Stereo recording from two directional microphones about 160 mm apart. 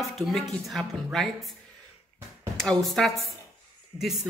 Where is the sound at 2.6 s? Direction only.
Centre (ahead or behind).